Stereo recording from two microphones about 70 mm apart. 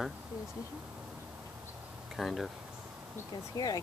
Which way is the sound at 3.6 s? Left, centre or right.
Left.